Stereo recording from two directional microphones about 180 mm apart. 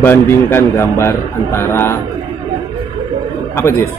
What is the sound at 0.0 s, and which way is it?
Speech, 10° left (ahead or behind).